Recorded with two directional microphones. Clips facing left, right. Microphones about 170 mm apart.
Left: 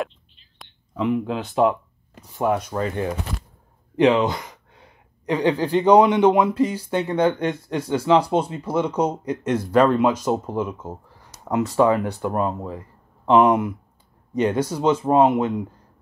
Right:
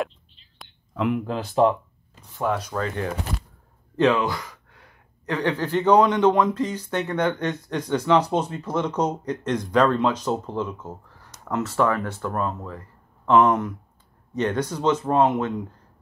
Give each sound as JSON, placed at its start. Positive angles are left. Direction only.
{"t": 0.6, "sound": "speech", "side_deg": 0}
{"t": 2.3, "sound": "speech", "side_deg": 20}